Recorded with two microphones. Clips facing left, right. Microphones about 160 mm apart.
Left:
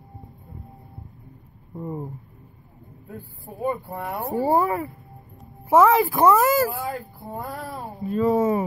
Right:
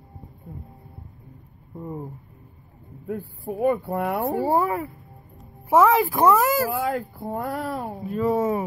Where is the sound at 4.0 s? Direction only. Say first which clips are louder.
Right 5 dB; 85° right.